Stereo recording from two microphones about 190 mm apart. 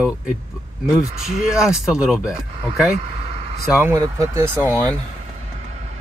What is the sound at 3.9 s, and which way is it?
Speech, 15° right (ahead or behind).